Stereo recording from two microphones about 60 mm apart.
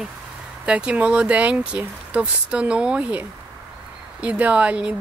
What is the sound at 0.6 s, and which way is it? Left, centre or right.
Speech, centre.